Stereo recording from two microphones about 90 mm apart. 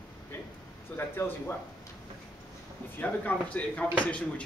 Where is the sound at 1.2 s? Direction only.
30° left (ahead or behind).